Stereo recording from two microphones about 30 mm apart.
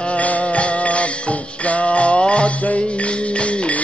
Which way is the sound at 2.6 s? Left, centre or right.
Left.